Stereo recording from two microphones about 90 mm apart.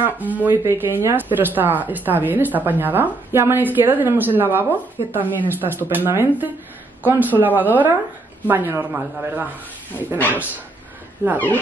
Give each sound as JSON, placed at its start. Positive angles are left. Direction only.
{"t": 0.0, "sound": "speech", "side_deg": -20}
{"t": 10.1, "sound": "speech", "side_deg": 20}